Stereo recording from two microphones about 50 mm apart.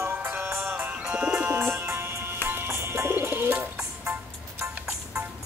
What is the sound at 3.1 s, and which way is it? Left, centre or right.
Bird, right.